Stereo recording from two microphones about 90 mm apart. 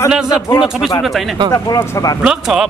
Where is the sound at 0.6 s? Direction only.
5° right (ahead or behind).